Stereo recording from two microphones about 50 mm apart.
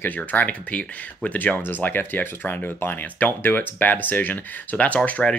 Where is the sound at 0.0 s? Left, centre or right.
Left.